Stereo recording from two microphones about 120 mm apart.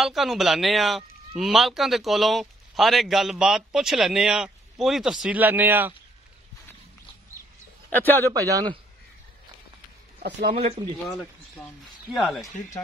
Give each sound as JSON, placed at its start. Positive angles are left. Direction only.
{"t": 0.0, "sound": "a man's voice", "side_deg": 0}
{"t": 7.9, "sound": "a man's voice", "side_deg": 15}
{"t": 8.3, "sound": "a man's voice", "side_deg": -30}
{"t": 10.5, "sound": "speech", "side_deg": -60}
{"t": 12.1, "sound": "a man's voice", "side_deg": 0}